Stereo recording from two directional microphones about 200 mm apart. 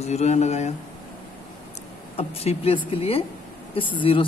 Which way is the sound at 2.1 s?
30° left (ahead or behind).